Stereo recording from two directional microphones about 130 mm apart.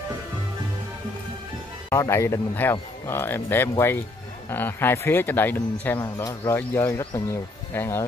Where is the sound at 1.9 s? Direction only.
20° left (ahead or behind).